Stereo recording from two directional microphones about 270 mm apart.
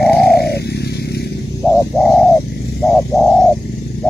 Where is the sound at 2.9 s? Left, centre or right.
Centre.